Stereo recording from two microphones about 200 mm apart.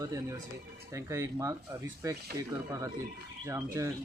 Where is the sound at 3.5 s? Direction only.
15° right (ahead or behind).